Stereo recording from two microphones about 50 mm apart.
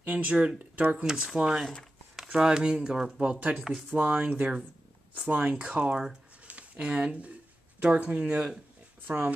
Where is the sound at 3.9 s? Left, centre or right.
Right.